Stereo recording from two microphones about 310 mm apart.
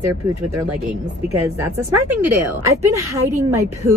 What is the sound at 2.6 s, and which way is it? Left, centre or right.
A woman's voice, centre.